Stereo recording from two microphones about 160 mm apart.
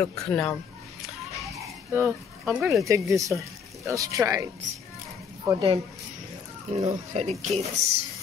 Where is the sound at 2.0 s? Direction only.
5° right (ahead or behind).